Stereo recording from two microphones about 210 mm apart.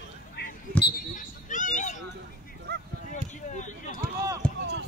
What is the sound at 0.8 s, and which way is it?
Basketball bounce, 40° left (ahead or behind).